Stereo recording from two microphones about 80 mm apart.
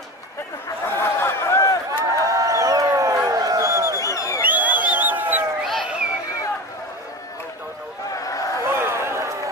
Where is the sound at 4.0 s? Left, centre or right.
Left.